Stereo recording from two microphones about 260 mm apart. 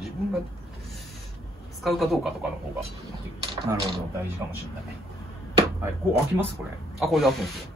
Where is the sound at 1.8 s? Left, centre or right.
Centre.